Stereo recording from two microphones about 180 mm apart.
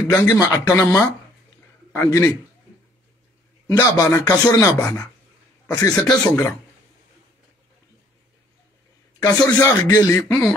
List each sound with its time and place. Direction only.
0.0 s speech: 10° left (ahead or behind)
0.7 s a man's voice: 10° left (ahead or behind)
3.6 s speech: 20° left (ahead or behind)
9.2 s speech: 15° left (ahead or behind)